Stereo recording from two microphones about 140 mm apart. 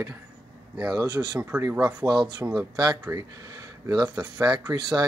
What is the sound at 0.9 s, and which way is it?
Speech, 25° right (ahead or behind).